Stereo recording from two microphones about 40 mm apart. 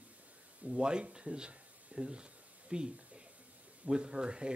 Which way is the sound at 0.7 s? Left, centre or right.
Right.